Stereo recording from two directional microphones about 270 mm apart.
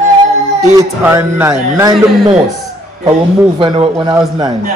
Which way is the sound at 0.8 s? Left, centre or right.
Centre.